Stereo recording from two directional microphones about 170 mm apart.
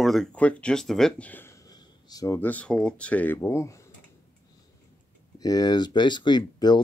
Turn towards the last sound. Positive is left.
turn(degrees=25)  # may be behind; listen again after turning